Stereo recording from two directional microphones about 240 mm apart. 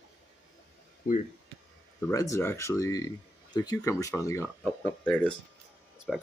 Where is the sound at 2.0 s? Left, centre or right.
Centre.